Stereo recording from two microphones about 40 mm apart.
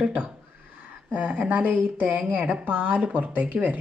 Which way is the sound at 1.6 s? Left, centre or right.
Right.